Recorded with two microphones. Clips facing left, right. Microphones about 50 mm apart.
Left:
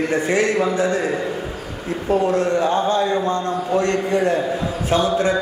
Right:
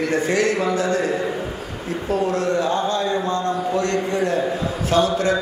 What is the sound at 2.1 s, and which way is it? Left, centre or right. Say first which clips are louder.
A man's voice: left 3 dB; left.